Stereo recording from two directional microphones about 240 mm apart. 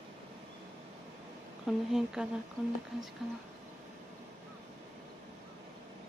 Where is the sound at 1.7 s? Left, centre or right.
Centre.